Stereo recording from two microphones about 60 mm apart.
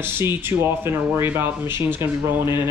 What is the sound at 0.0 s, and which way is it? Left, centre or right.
Speech, right.